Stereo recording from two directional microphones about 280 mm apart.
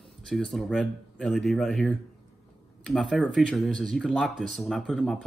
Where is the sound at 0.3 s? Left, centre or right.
Centre.